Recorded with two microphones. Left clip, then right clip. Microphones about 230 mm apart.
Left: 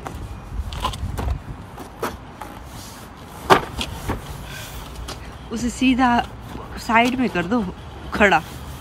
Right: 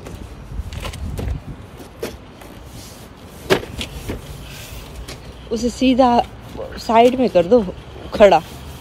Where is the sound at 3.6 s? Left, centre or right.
Centre.